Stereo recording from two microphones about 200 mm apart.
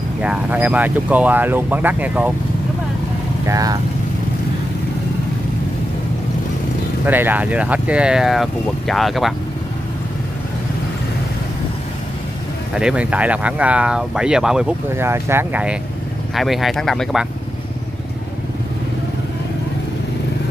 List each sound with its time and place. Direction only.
0.2 s speech: 5° right (ahead or behind)
3.4 s speech: 20° right (ahead or behind)
7.1 s speech: 10° right (ahead or behind)
12.7 s speech: 5° right (ahead or behind)